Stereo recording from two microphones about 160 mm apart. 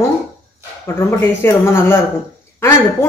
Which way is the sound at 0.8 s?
15° left (ahead or behind).